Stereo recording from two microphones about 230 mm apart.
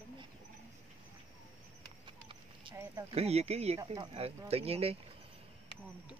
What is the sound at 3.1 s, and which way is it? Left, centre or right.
Speech, right.